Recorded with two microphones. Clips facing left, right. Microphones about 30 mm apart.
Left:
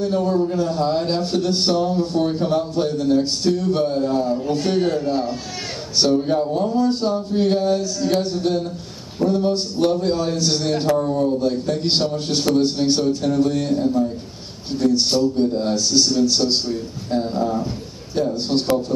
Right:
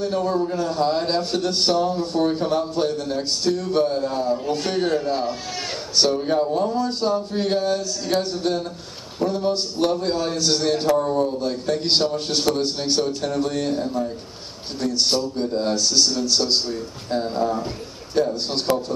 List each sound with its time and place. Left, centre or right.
0.0 s a man's voice: centre